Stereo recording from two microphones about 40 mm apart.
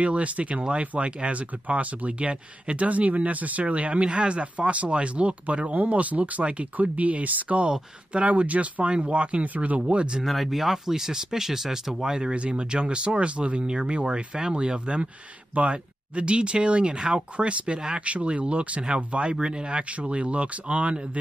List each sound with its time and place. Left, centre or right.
0.0 s speech: right
9.8 s speech: right
10.2 s speech: centre
12.2 s speech: right
18.0 s speech: right
19.8 s speech: right